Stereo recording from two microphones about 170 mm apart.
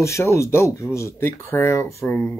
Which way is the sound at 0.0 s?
15° left (ahead or behind).